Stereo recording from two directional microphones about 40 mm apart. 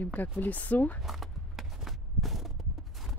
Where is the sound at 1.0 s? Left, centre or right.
Centre.